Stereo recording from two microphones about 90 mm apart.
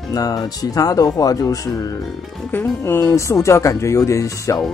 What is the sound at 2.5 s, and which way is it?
Speech, 25° left (ahead or behind).